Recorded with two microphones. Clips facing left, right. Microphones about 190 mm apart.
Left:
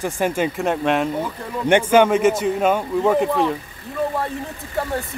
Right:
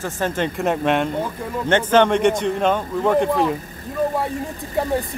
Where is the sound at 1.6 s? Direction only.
10° left (ahead or behind).